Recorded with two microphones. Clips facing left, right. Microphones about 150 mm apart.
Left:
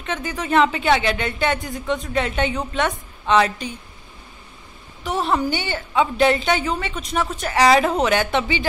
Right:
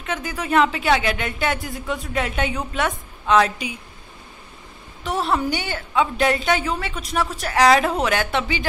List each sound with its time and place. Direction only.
0.3 s a woman's voice: centre (ahead or behind)
5.0 s a woman's voice: centre (ahead or behind)